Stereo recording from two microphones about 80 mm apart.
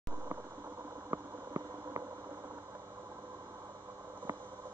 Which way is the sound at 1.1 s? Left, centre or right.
Right.